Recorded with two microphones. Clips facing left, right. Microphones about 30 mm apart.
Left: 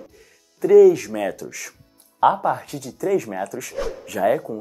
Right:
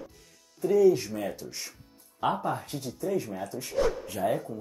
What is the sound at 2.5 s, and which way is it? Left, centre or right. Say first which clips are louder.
Speech: left 4 dB; left.